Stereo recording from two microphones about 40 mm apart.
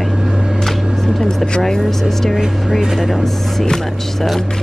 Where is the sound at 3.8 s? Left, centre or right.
Centre.